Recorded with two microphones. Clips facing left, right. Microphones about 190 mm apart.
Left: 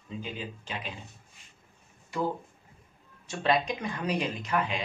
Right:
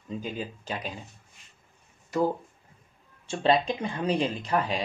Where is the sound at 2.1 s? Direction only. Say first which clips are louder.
Right 5 dB; 40° right (ahead or behind).